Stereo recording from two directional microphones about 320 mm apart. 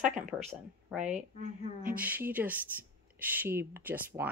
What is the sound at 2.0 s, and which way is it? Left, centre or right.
Speech, centre.